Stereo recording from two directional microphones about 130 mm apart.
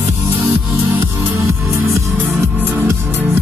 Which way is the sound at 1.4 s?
20° right (ahead or behind).